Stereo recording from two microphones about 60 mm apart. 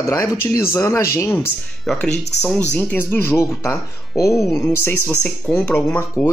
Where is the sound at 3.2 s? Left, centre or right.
Left.